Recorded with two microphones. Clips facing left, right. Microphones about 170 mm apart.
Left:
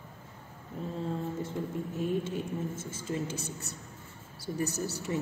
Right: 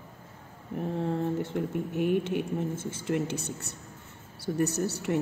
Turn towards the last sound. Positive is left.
turn(degrees=-65)  # may be behind; listen again after turning